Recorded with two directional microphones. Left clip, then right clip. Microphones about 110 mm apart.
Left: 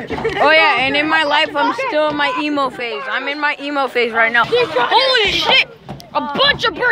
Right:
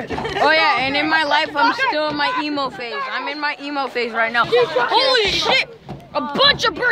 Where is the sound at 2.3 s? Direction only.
20° left (ahead or behind).